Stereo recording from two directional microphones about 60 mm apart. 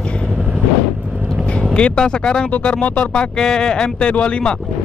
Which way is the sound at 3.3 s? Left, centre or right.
Centre.